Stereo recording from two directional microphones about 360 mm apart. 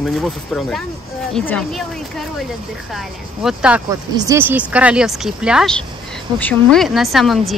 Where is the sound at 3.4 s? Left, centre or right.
Centre.